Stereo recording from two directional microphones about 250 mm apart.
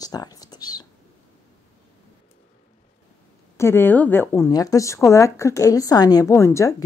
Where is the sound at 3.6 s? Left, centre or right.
Centre.